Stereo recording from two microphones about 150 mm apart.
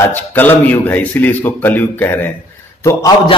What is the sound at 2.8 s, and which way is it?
Speech, 25° left (ahead or behind).